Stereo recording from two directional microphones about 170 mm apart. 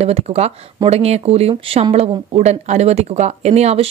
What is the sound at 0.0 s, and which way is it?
Speech, 40° right (ahead or behind).